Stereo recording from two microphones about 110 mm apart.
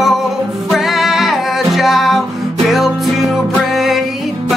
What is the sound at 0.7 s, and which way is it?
Music, centre (ahead or behind).